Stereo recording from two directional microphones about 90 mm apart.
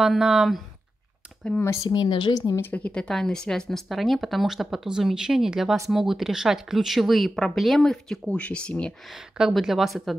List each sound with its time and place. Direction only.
0.0 s speech: 5° right (ahead or behind)
1.9 s speech: 55° left (ahead or behind)
2.3 s a woman's voice: 40° left (ahead or behind)
2.6 s speech: 15° left (ahead or behind)
9.1 s speech: 5° right (ahead or behind)